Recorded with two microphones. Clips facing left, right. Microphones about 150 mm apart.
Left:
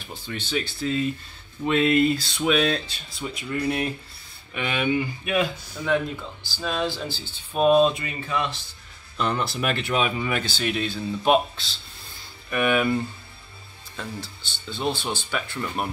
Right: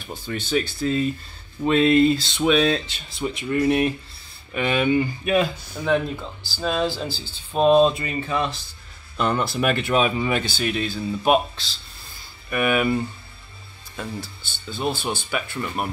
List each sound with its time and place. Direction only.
0.1 s speech: 45° right (ahead or behind)
1.7 s a sound: 30° right (ahead or behind)
3.2 s speech: 40° right (ahead or behind)
4.6 s speech: 40° right (ahead or behind)
9.1 s speech: 50° right (ahead or behind)
10.0 s a sound: 30° right (ahead or behind)
10.6 s speech: centre (ahead or behind)